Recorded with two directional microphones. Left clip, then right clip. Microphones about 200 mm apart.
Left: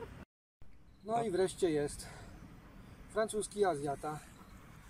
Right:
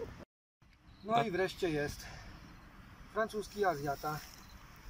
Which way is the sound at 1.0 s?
5° left (ahead or behind).